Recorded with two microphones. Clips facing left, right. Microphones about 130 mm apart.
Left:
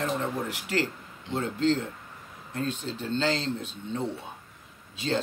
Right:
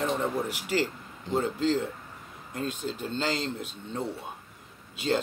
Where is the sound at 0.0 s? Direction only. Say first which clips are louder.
Right 1 dB; 10° right (ahead or behind).